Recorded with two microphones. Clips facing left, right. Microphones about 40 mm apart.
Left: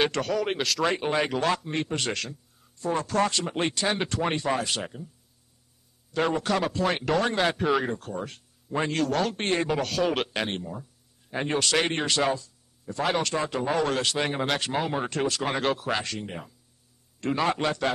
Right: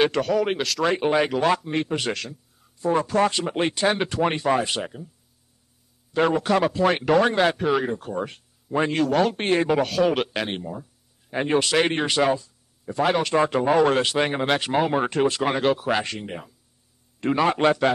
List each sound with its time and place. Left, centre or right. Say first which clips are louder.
0.0 s a man's voice: right 5 dB; centre
6.1 s a man's voice: right 5 dB; centre
8.1 s speech: right 5 dB; centre
8.7 s a man's voice: right 5 dB; centre; by 15.4 s right
15.4 s a man's voice: right 5 dB; centre